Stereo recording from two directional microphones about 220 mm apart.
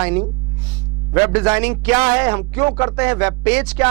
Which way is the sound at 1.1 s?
20° right (ahead or behind).